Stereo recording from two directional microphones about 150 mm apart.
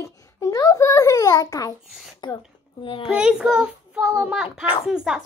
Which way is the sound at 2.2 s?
30° left (ahead or behind).